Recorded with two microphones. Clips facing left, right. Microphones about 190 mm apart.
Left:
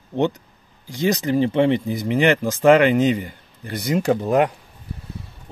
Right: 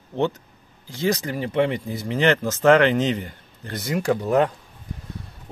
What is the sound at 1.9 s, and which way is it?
Speech, 15° left (ahead or behind).